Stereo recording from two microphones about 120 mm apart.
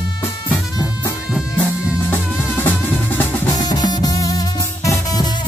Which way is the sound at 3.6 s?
35° left (ahead or behind).